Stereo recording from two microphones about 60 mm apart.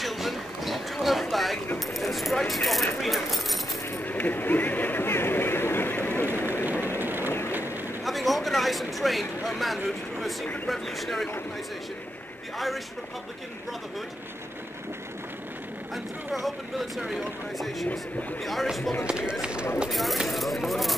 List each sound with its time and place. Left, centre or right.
0.0 s a sound: centre
2.0 s keys jangling: centre
4.0 s a sound: left
7.0 s a sound: right
7.5 s boat: right
8.0 s speech: centre
12.5 s speech: centre
15.9 s speech: centre
19.0 s speech: centre
19.9 s speech: centre